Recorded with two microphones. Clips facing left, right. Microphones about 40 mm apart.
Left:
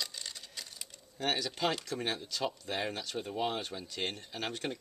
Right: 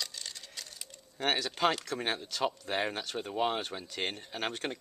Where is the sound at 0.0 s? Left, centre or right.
Centre.